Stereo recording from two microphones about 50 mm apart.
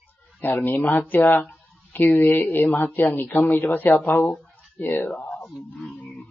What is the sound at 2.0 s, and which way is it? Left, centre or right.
Speech, left.